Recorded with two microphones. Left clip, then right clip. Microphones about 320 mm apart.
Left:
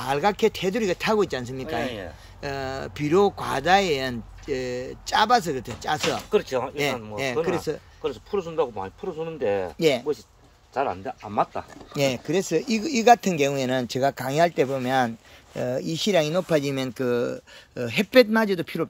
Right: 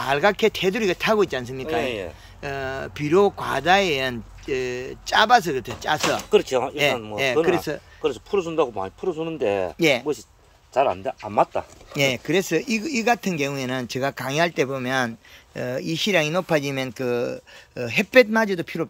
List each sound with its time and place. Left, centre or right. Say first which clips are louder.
0.0 s speech: right 3 dB; centre
1.8 s speech: right 5 dB; right
2.4 s speech: right 2 dB; centre
5.9 s speech: right 4 dB; right
7.4 s speech: right 4 dB; centre
8.0 s speech: right 6 dB; right
9.8 s speech: right 2 dB; centre
10.7 s speech: right 6 dB; right
11.9 s speech: right 3 dB; centre